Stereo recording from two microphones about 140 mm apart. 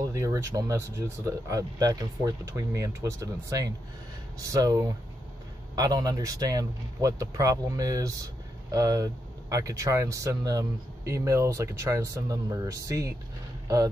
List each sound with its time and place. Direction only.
0.1 s speech: 20° right (ahead or behind)